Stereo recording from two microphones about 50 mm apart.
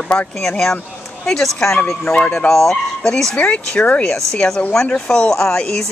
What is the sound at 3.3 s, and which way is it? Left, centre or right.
Speech, left.